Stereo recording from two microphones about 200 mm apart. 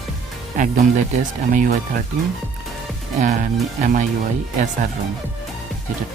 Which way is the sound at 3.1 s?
40° right (ahead or behind).